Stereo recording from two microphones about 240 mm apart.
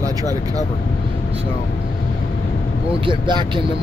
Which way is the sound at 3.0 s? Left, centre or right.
Centre.